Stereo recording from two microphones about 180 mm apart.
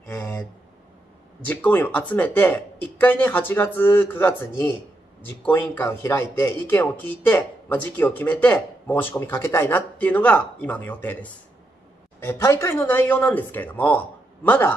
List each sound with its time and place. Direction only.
0.1 s a sound: 15° left (ahead or behind)
1.5 s speech: 10° left (ahead or behind)
12.2 s speech: 15° left (ahead or behind)